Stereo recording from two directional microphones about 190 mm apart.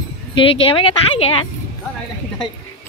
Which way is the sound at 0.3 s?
30° left (ahead or behind).